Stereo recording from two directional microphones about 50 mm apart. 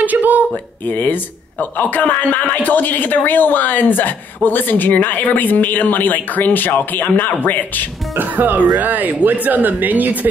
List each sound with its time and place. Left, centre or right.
0.0 s a sound: right
0.8 s speech: left
8.2 s speech: right